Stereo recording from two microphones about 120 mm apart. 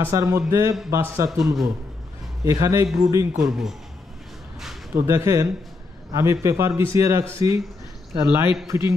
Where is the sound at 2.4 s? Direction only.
25° right (ahead or behind).